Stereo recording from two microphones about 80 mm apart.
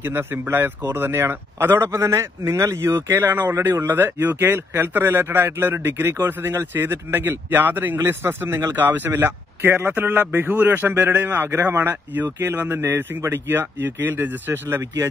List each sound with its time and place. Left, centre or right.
0.0 s a man's voice: right